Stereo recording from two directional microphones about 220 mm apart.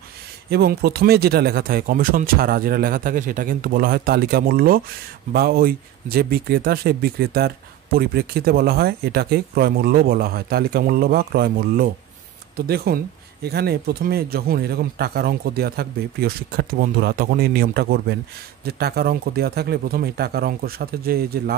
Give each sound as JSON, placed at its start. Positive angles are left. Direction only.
{"t": 0.5, "sound": "speech", "side_deg": -45}